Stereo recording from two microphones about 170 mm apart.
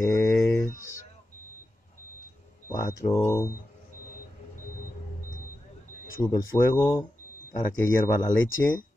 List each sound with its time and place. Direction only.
0.0 s a sound: 15° left (ahead or behind)
2.7 s speech: 20° left (ahead or behind)
6.1 s speech: 15° left (ahead or behind)